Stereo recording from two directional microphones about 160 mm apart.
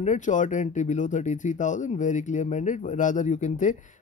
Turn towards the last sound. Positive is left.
turn(degrees=50)  # may be behind; listen again after turning